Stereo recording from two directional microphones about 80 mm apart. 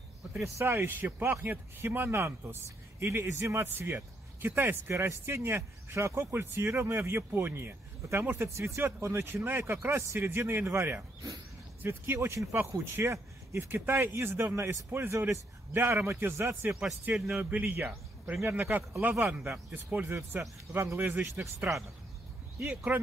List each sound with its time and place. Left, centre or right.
0.6 s speech: right
15.1 s a man's voice: right
22.9 s speech: right